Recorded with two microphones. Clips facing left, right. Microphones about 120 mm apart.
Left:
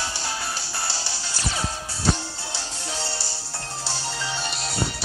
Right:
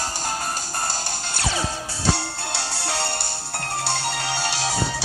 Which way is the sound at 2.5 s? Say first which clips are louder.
Right 6 dB; 75° right (ahead or behind).